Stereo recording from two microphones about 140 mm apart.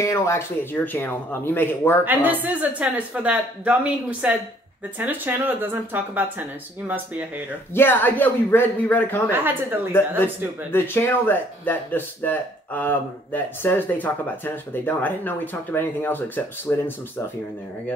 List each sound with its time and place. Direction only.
0.0 s speech: 20° left (ahead or behind)
2.0 s a woman's voice: 15° right (ahead or behind)
7.7 s speech: 15° left (ahead or behind)
9.3 s a woman's voice: 15° right (ahead or behind)
10.7 s speech: 15° left (ahead or behind)